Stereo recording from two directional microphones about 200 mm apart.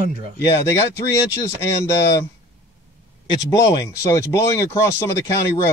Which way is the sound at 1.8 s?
15° left (ahead or behind).